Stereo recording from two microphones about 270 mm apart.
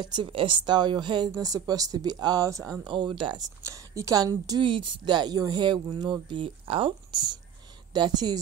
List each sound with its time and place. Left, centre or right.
0.0 s speech: centre